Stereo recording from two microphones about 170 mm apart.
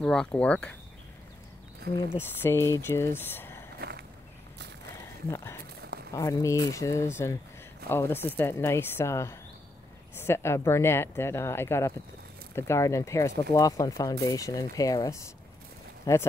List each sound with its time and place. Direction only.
0.0 s speech: 5° left (ahead or behind)
2.0 s speech: 15° left (ahead or behind)
5.3 s speech: 15° left (ahead or behind)